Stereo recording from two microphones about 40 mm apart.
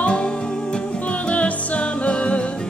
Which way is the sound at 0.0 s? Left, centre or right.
Left.